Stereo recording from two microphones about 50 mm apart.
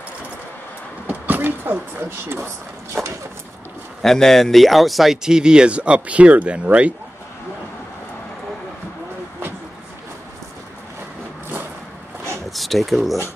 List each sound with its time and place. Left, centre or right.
1.0 s speech: right
4.0 s speech: centre; by 6.9 s right
12.4 s a sound: centre